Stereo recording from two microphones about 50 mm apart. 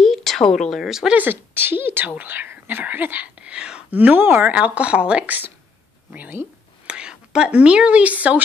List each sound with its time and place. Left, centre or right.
0.0 s a woman's voice: centre
1.1 s speech: right
3.3 s whispering: right
3.9 s speech: right
4.6 s speech: right
6.9 s speech: centre